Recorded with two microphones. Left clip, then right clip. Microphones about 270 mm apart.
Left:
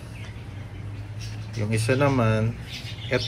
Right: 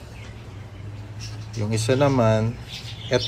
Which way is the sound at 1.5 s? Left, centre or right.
Centre.